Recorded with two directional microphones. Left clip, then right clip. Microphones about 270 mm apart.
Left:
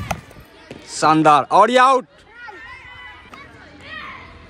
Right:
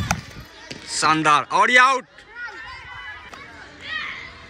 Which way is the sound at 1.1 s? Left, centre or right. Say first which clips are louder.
Left 5 dB; centre.